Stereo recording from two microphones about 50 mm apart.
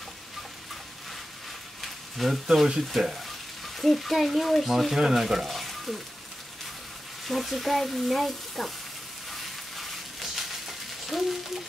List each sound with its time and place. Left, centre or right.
1.8 s speech: centre
7.2 s speech: centre
9.3 s frying: centre